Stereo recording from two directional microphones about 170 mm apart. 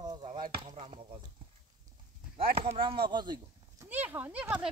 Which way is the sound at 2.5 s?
35° right (ahead or behind).